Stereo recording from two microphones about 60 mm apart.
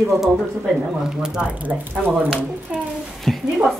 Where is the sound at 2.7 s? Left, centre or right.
Centre.